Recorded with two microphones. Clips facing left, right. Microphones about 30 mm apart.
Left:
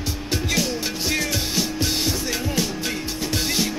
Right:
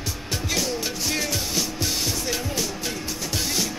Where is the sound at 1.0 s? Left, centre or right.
Left.